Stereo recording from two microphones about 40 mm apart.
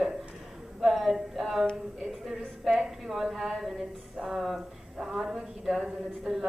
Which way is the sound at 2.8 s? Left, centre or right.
Centre.